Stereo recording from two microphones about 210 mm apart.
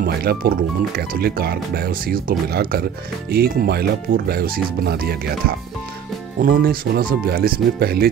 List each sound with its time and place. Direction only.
0.0 s speech: 45° right (ahead or behind)